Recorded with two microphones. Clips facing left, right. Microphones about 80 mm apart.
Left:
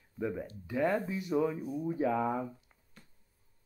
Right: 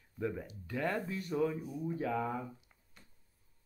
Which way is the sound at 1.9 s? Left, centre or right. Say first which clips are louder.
Left 5 dB; centre.